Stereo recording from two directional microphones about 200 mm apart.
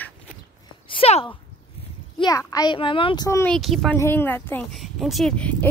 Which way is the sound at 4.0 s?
10° left (ahead or behind).